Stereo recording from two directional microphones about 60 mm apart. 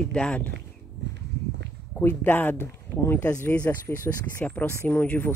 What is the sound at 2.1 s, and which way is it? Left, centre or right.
Speech, left.